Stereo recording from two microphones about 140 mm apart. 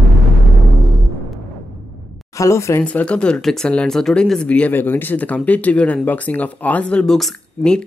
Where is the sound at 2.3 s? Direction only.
20° left (ahead or behind).